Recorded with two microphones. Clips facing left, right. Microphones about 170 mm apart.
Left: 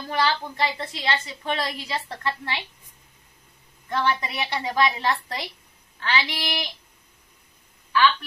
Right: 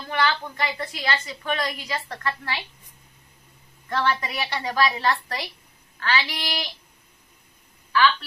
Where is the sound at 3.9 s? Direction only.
20° left (ahead or behind).